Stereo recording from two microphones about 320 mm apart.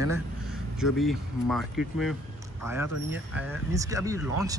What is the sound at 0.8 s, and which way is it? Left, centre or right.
Speech, centre.